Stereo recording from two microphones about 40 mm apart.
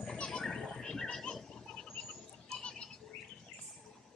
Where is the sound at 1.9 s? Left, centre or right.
Left.